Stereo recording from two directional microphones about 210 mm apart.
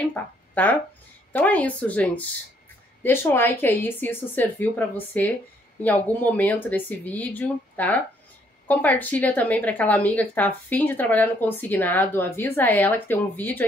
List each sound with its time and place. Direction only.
0.1 s a woman's voice: 10° left (ahead or behind)